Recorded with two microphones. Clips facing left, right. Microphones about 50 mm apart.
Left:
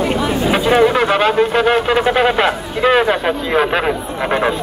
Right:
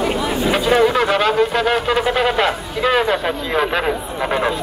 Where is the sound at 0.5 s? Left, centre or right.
Centre.